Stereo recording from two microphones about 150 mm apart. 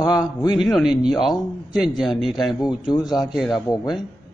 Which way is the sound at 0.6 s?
Centre (ahead or behind).